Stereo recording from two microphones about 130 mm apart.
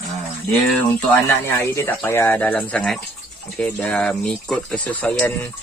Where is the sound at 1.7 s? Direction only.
20° left (ahead or behind).